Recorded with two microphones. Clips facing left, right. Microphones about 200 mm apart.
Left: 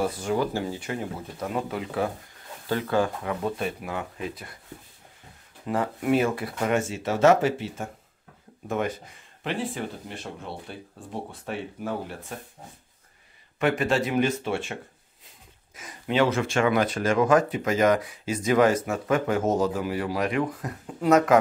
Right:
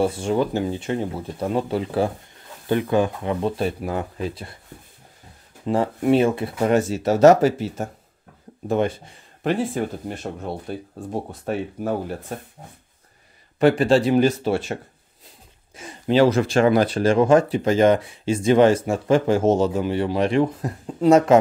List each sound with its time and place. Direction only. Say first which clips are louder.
0.0 s speech: right 5 dB; 25° right (ahead or behind)
2.7 s speech: right 5 dB; 20° right (ahead or behind)
5.7 s speech: right 5 dB; 30° right (ahead or behind)
6.7 s speech: right 7 dB; 40° right (ahead or behind)
8.6 s speech: right 6 dB; 30° right (ahead or behind)
9.4 s speech: right 7 dB; 45° right (ahead or behind)
13.6 s speech: right 7 dB; 30° right (ahead or behind)